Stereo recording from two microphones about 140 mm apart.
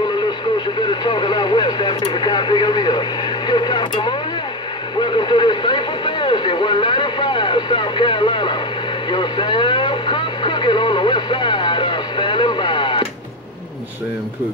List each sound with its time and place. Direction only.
1.0 s radio: 35° left (ahead or behind)
5.0 s speech: 35° left (ahead or behind)
9.1 s radio: 35° left (ahead or behind)